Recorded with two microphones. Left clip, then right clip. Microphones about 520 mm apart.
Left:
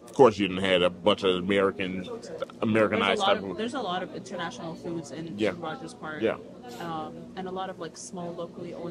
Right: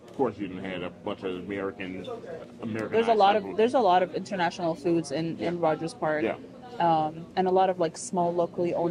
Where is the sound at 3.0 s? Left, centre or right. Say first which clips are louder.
Right 3 dB; right.